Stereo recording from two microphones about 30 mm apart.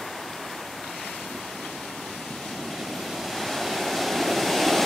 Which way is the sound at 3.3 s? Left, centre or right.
Centre.